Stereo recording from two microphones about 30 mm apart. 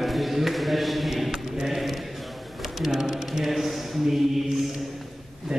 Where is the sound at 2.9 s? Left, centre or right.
Centre.